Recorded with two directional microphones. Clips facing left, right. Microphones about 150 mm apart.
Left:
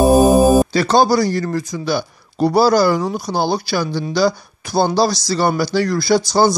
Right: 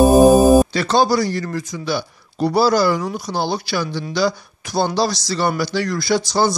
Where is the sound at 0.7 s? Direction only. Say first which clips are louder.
Left 3 dB; 40° left (ahead or behind).